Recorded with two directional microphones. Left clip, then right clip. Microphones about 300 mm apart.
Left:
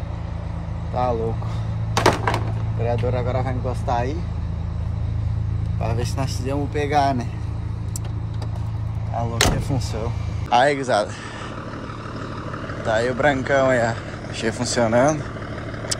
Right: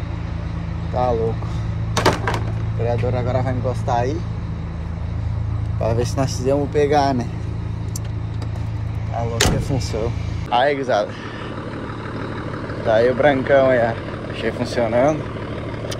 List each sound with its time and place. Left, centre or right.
1.0 s speech: centre
2.0 s a sound: left
3.8 s speech: centre
5.8 s speech: centre
9.4 s speech: centre
12.2 s speech: centre